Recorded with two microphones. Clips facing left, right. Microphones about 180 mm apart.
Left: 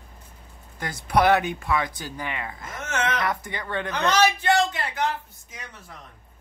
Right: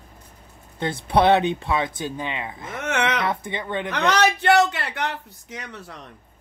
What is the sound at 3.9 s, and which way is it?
A man's voice, 70° right (ahead or behind).